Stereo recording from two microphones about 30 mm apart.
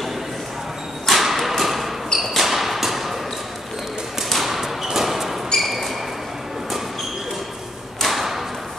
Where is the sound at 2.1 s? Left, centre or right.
Centre.